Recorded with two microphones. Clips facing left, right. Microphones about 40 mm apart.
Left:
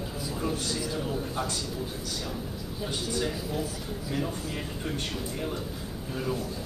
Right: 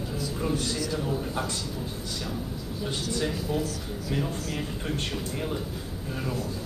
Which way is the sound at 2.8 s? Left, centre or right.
Centre.